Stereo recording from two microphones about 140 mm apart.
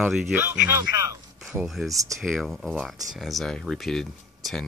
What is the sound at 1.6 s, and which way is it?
Speech, centre (ahead or behind).